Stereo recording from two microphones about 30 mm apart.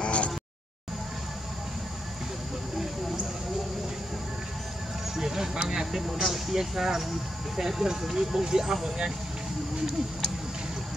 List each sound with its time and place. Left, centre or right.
0.0 s a sound: left
5.1 s vehicle: centre
5.7 s speech: centre
8.8 s speech: right